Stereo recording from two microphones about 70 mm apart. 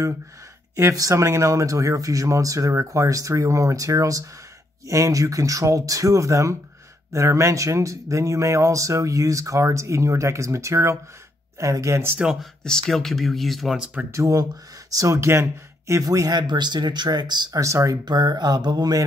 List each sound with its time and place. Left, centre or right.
0.7 s speech: right
12.6 s speech: centre
14.1 s speech: right
15.1 s speech: right
16.0 s speech: right
17.6 s speech: right
18.0 s mantra: right